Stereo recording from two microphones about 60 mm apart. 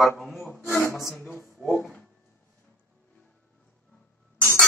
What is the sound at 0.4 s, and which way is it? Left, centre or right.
Rub, left.